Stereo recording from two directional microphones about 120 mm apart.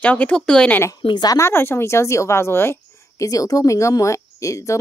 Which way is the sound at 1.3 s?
20° left (ahead or behind).